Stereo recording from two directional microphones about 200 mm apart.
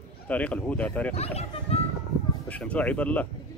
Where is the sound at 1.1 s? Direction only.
30° left (ahead or behind).